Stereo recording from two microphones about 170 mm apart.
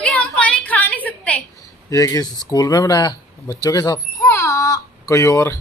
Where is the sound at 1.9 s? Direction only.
20° left (ahead or behind).